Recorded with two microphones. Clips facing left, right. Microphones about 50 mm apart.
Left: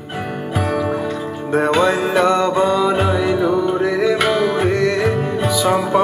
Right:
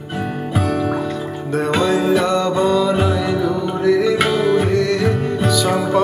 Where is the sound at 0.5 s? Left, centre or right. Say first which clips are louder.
Even; centre.